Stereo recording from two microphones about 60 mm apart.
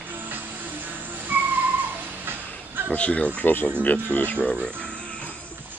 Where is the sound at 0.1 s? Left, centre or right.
Right.